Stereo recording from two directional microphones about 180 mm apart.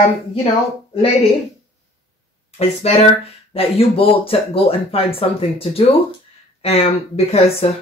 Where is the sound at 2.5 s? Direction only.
35° left (ahead or behind).